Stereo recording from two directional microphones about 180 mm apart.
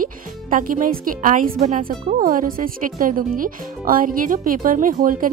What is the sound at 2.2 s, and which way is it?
Speech, 50° right (ahead or behind).